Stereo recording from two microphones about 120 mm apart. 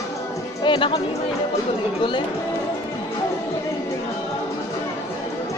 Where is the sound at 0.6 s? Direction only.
40° left (ahead or behind).